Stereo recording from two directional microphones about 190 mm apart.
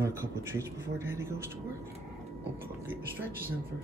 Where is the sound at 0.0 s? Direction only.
15° right (ahead or behind).